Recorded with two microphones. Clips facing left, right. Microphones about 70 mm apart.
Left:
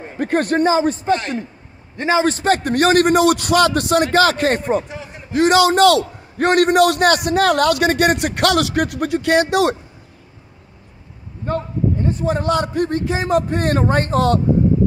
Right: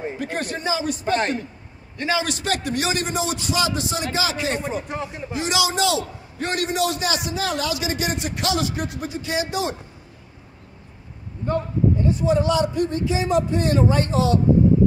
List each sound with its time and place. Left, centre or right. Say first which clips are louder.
0.2 s a man's voice: left 15 dB; left
0.7 s a man's voice: left 5 dB; left
12.0 s a man's voice: even; left